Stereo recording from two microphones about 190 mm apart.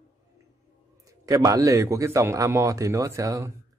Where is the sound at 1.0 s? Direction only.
20° right (ahead or behind).